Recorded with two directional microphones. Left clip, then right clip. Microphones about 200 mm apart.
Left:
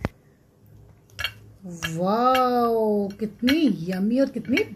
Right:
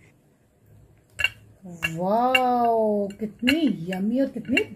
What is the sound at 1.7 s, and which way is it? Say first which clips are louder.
Speech: right 1 dB; 15° left (ahead or behind).